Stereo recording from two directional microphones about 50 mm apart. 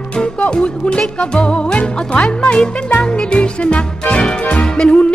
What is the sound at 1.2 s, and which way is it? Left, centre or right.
Speech, centre.